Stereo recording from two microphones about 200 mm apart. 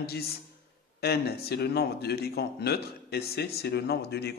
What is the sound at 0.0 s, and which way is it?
Speech, 50° left (ahead or behind).